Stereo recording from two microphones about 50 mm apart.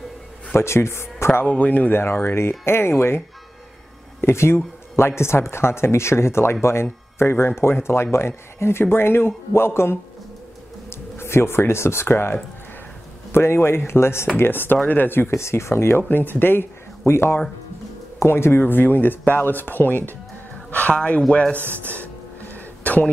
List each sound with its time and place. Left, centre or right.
0.6 s speech: left
1.5 s speech: left
1.9 s speech: left
10.9 s speech: left
14.4 s speech: left
15.3 s speech: left
16.3 s speech: left
18.2 s speech: left
20.7 s speech: left
21.5 s speech: right
21.9 s music: left